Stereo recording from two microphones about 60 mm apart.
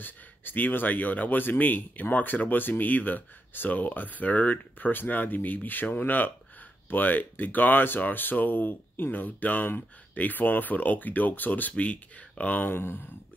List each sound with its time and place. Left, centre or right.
0.0 s speech: left